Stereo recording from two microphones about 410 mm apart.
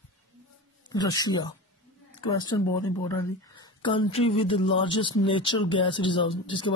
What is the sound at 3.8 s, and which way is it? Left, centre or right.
A woman's voice, centre.